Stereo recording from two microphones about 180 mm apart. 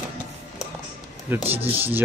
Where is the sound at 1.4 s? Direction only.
35° right (ahead or behind).